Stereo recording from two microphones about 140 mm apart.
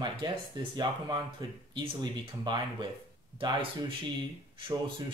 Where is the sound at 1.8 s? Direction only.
35° right (ahead or behind).